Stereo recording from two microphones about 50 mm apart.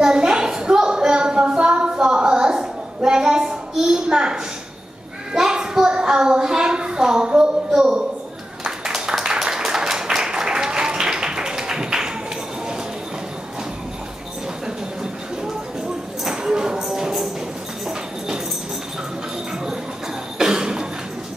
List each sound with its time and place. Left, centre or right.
0.0 s a sound: centre
16.3 s tambourine: centre
20.3 s cough: centre